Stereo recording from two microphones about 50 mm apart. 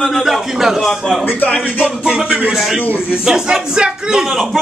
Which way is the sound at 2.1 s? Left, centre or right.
Right.